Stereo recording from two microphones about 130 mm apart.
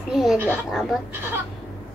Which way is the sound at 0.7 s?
Centre (ahead or behind).